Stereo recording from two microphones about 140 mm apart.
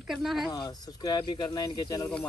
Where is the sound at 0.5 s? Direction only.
30° left (ahead or behind).